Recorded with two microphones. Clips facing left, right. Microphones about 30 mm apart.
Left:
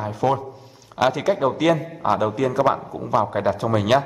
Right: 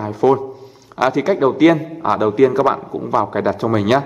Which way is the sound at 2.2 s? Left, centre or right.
Centre.